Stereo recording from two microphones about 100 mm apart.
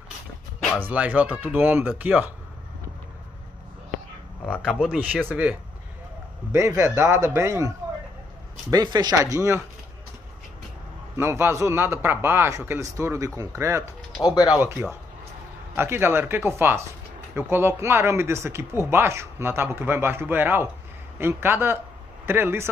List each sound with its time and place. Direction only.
0.7 s speech: 15° right (ahead or behind)
4.5 s speech: 10° right (ahead or behind)
6.5 s speech: 30° right (ahead or behind)
8.8 s speech: 45° right (ahead or behind)
11.1 s speech: 25° right (ahead or behind)
14.2 s speech: 40° left (ahead or behind)
14.6 s speech: 25° right (ahead or behind)